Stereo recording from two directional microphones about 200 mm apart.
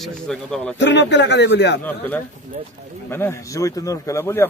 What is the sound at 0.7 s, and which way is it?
A man's voice, 60° left (ahead or behind).